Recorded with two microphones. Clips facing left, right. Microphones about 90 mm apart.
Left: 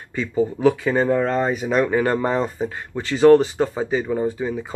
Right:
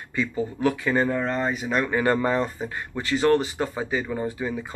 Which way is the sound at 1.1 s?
40° left (ahead or behind).